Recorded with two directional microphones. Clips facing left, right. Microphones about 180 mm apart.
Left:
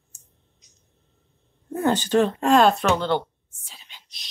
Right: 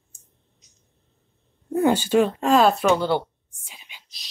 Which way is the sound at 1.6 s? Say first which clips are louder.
Right 3 dB; 10° right (ahead or behind).